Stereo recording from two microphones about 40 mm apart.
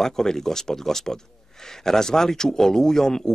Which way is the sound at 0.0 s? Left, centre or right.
Centre.